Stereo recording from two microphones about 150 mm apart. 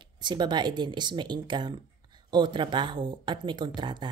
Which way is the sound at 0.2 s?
30° right (ahead or behind).